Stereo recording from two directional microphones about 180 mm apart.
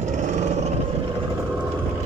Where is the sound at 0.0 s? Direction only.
40° right (ahead or behind).